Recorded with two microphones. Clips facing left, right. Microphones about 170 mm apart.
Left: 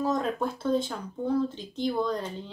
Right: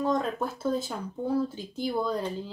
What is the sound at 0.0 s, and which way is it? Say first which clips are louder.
Speech: even; centre (ahead or behind).